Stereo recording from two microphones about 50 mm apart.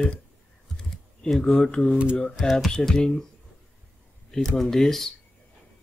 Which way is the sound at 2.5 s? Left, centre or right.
Centre.